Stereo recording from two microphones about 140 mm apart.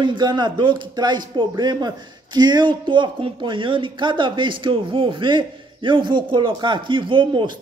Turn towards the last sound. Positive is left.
turn(degrees=-35)  # may be behind; listen again after turning